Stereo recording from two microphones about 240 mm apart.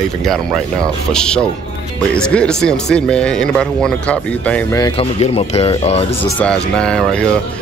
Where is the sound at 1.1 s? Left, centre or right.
Centre; by 6.0 s left.